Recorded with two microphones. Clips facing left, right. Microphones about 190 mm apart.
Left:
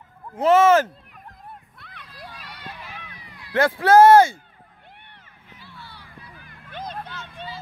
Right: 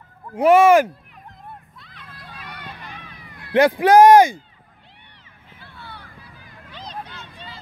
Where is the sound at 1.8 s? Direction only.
55° left (ahead or behind).